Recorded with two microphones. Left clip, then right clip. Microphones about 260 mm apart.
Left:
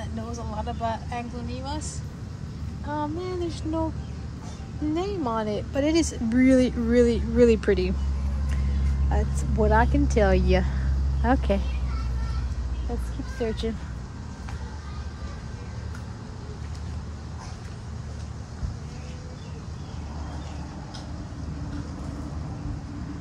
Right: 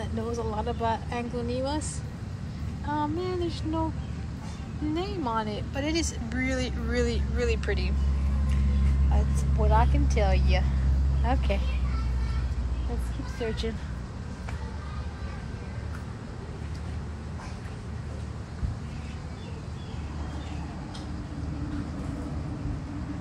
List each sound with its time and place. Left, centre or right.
0.6 s speech: centre
2.9 s a sound: left
4.9 s speech: left
9.1 s speech: left
13.4 s speech: left